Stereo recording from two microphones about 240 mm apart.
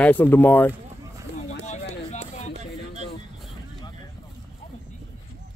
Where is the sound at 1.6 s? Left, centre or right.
Left.